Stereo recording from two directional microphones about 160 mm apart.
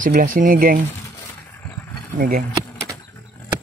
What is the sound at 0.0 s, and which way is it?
Speech, 55° right (ahead or behind).